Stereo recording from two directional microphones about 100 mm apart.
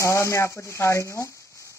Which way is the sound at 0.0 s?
30° left (ahead or behind).